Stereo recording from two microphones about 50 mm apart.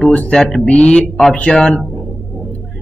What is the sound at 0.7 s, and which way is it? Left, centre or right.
Speech, left.